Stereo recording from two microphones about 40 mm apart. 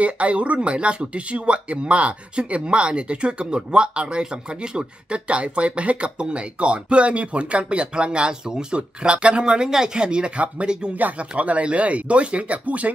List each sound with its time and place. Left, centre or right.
0.0 s speech: right
11.0 s speech: right